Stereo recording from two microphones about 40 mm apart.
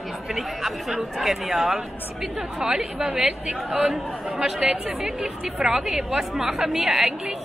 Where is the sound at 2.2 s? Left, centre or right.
Centre.